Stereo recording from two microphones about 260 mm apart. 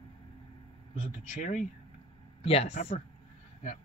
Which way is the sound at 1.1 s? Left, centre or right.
Left.